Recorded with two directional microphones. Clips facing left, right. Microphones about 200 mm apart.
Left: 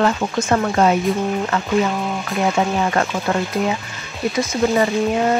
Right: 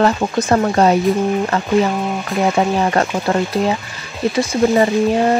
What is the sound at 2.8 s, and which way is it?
Speech, 35° right (ahead or behind).